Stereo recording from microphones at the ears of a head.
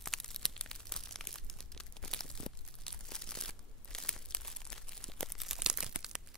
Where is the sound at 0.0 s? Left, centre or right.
Centre.